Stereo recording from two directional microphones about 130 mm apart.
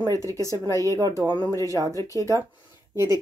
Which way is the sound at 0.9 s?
30° right (ahead or behind).